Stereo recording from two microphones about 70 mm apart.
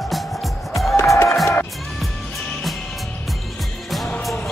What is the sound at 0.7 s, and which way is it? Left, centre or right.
Music, left.